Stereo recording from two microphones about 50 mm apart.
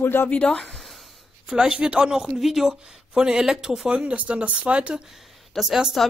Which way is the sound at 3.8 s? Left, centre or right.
Right.